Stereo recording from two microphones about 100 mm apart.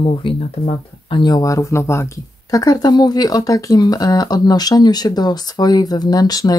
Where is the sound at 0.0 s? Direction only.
55° left (ahead or behind).